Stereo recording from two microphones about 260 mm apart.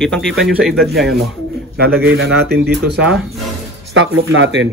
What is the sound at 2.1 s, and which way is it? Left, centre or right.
Speech, right.